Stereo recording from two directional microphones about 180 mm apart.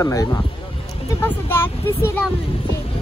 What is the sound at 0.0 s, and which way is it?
Speech, 20° left (ahead or behind).